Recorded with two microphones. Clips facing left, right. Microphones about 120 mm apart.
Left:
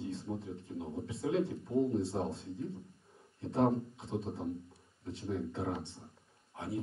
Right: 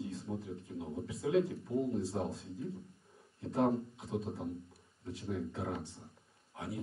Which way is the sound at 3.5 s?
25° left (ahead or behind).